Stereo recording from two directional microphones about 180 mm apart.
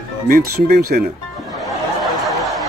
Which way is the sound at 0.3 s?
55° right (ahead or behind).